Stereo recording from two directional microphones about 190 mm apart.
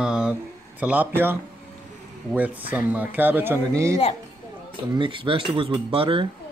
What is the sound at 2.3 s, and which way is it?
Speech, 10° right (ahead or behind).